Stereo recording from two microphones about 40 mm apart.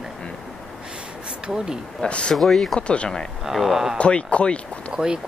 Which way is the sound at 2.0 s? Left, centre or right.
Left.